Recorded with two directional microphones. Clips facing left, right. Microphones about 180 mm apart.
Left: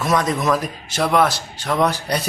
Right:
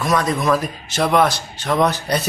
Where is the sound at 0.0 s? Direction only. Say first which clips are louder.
Even; 20° left (ahead or behind).